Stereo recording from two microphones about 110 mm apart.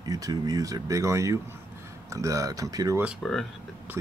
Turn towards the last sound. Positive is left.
turn(degrees=5)  # may be behind; listen again after turning